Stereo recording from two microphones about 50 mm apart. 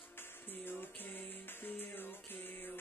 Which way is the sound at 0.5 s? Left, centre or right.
Left.